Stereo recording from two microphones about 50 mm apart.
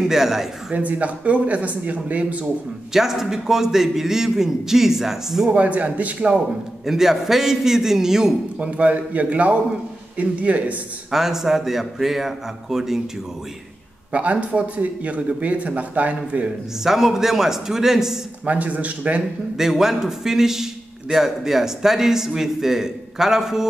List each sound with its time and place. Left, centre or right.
0.0 s a man's voice: centre
0.7 s speech: right
2.9 s a man's voice: centre
5.5 s speech: right
6.9 s a man's voice: centre
8.5 s speech: right
11.1 s a man's voice: centre
14.1 s speech: right
16.8 s a man's voice: centre
18.4 s speech: right
19.5 s a man's voice: centre